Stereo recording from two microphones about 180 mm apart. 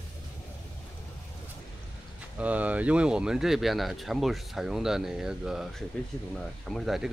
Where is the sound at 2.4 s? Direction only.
10° right (ahead or behind).